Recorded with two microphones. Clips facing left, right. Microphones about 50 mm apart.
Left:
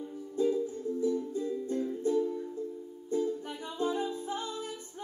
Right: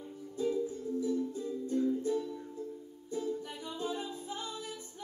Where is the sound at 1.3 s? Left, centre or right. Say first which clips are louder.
Left 3 dB; left.